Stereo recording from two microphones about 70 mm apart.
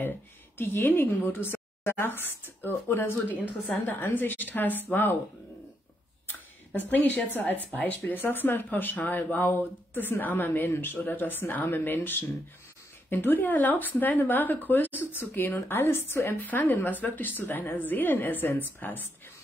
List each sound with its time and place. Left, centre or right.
0.6 s a woman's voice: left
6.9 s speech: left